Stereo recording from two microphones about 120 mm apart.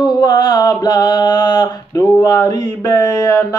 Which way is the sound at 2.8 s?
30° left (ahead or behind).